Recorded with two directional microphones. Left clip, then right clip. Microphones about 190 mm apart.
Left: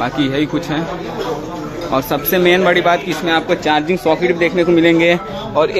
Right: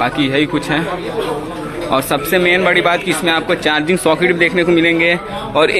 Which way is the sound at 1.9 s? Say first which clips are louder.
Right 2 dB; 5° left (ahead or behind).